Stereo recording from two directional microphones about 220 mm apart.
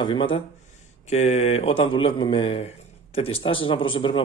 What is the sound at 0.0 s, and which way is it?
A man's voice, 20° left (ahead or behind).